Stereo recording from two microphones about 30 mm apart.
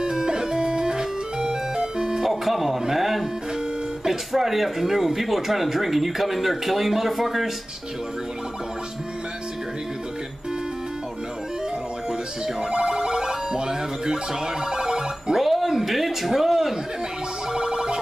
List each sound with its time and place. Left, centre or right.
0.0 s music: right
2.2 s music: centre
4.0 s speech: centre
12.5 s music: right
15.3 s a sound: centre
17.5 s a sound: right